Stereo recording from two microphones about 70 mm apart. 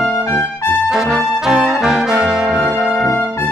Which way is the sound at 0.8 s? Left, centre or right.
Centre.